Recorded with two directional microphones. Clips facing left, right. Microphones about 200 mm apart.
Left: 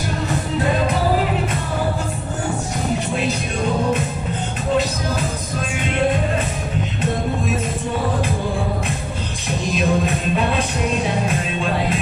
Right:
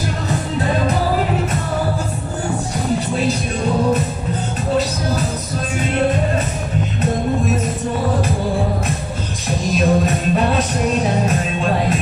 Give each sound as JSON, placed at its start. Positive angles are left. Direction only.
{"t": 9.7, "sound": "music", "side_deg": -40}